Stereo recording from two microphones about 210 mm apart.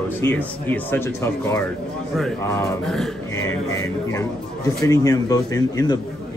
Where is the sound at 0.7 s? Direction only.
10° left (ahead or behind).